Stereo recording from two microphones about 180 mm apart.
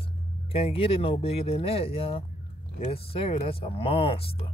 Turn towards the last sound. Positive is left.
turn(degrees=30)  # may be behind; listen again after turning